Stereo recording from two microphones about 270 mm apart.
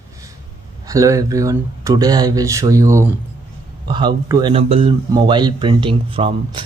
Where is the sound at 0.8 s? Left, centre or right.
Centre.